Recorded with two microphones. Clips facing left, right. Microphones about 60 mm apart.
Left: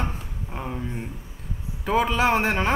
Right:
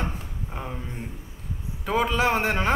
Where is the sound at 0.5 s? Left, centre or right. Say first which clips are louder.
Left 4 dB; centre.